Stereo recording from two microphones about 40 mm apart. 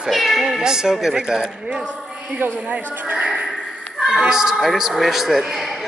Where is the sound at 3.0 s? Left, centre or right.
Right.